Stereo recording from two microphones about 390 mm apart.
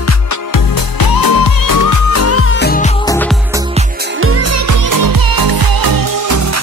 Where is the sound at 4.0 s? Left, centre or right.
Right.